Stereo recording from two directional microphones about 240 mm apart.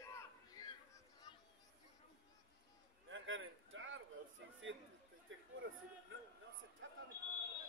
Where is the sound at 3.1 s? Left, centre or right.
Right.